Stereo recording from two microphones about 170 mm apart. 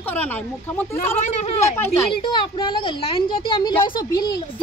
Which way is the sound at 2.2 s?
25° left (ahead or behind).